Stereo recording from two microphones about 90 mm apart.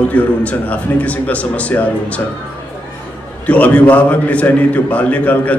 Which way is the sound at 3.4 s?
15° left (ahead or behind).